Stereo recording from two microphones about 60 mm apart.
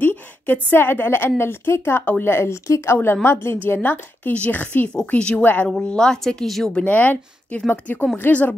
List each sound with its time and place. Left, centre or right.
0.0 s a woman's voice: left
2.0 s a woman's voice: left
2.3 s a woman's voice: left
3.6 s speech: left
5.1 s speech: centre
5.4 s speech: left
5.7 s a woman's voice: centre
6.7 s speech: left